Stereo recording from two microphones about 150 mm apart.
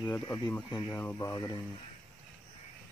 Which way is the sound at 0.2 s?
20° left (ahead or behind).